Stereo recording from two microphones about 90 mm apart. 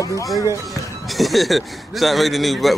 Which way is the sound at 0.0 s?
40° left (ahead or behind).